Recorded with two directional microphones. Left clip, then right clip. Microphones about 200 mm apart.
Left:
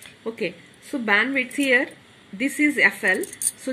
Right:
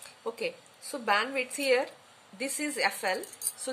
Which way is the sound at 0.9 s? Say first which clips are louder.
Left 7 dB; centre (ahead or behind).